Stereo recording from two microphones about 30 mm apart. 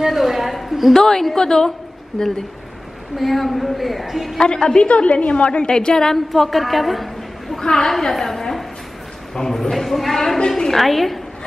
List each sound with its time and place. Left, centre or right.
0.0 s a sound: centre
0.9 s a woman's voice: centre
3.2 s a woman's voice: centre
4.4 s a woman's voice: left
4.8 s a woman's voice: left
6.1 s a woman's voice: centre